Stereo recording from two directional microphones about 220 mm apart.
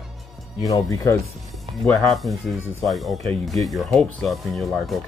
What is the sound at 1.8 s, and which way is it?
Speech, centre (ahead or behind).